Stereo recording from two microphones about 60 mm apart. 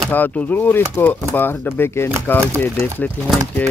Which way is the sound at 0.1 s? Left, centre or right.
Left.